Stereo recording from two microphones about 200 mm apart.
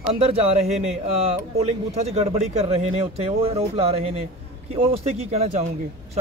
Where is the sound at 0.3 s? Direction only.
30° right (ahead or behind).